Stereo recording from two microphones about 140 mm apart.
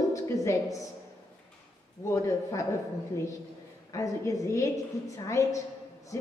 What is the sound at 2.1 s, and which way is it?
Speech, 25° left (ahead or behind).